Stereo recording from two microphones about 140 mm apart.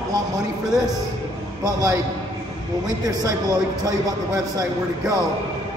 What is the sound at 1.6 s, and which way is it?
Speech, 25° right (ahead or behind).